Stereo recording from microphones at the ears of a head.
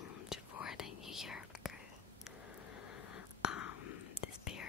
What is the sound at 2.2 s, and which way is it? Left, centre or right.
Whispering, left.